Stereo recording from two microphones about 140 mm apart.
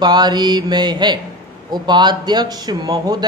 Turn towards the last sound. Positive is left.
turn(degrees=-25)  # may be behind; listen again after turning